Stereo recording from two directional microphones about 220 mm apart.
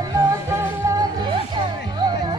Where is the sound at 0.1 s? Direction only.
15° right (ahead or behind).